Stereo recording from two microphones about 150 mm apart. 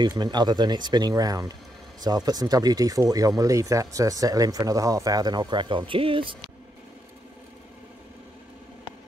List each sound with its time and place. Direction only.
0.0 s speech: 30° right (ahead or behind)